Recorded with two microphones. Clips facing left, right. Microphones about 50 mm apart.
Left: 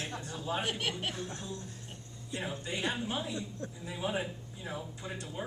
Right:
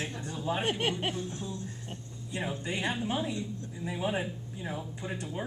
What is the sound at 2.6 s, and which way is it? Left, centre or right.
A man's voice, right.